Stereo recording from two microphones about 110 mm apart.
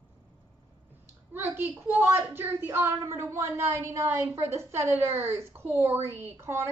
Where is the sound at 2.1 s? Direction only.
20° right (ahead or behind).